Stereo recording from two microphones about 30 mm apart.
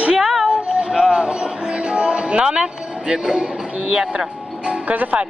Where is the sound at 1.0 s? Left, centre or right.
Right.